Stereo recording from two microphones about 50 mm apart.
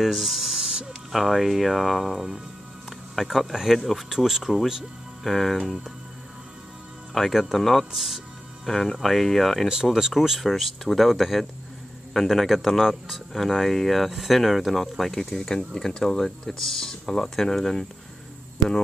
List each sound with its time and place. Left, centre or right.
0.0 s a sound: centre
1.1 s speech: centre
7.2 s speech: centre
9.7 s speech: centre